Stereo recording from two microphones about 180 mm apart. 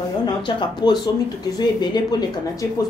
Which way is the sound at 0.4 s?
25° left (ahead or behind).